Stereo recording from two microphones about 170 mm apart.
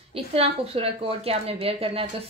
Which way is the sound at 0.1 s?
35° right (ahead or behind).